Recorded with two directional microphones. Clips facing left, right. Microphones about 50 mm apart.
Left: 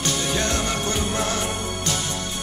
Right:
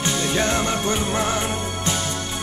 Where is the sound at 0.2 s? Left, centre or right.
Right.